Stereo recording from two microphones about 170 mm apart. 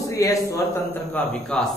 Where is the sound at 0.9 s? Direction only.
5° left (ahead or behind).